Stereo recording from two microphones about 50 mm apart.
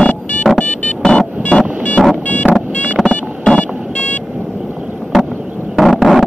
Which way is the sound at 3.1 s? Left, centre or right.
Left.